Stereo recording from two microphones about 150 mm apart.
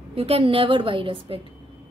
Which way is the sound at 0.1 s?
40° right (ahead or behind).